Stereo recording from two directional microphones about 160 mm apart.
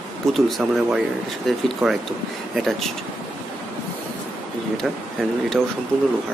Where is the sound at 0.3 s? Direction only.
Centre (ahead or behind).